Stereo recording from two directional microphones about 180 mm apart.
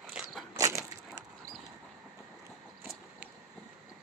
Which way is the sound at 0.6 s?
15° right (ahead or behind).